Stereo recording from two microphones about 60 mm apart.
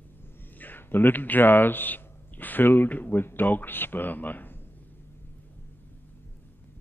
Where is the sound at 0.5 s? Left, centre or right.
Left.